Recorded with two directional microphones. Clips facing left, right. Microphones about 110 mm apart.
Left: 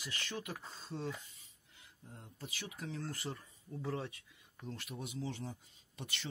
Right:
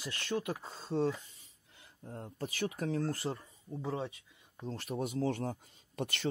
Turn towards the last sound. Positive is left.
turn(degrees=-50)  # may be behind; listen again after turning